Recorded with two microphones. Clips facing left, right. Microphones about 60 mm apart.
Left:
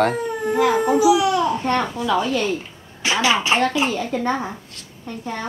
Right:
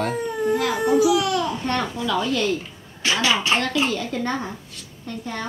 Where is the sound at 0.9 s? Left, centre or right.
Left.